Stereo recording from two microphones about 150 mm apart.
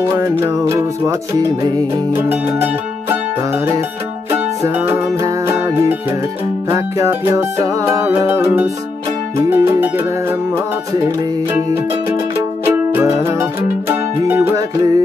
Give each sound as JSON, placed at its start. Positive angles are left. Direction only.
{"t": 0.1, "sound": "music", "side_deg": -20}
{"t": 4.3, "sound": "music", "side_deg": -15}
{"t": 12.6, "sound": "music", "side_deg": -15}